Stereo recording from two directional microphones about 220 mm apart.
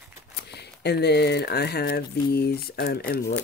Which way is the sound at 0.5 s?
50° left (ahead or behind).